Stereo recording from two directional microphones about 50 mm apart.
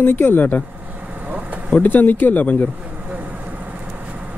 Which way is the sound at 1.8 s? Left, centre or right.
Left.